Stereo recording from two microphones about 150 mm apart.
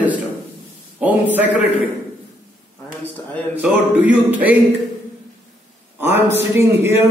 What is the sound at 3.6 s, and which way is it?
Speech, 10° right (ahead or behind).